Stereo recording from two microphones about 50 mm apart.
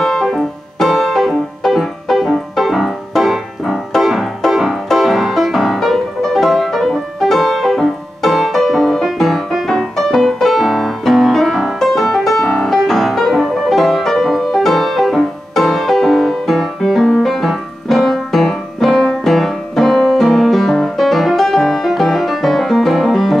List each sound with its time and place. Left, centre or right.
0.0 s music: centre